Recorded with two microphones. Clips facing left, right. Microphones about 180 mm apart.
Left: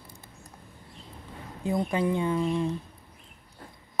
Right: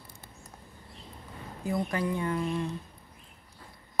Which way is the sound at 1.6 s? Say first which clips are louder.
Left 4 dB; 25° left (ahead or behind).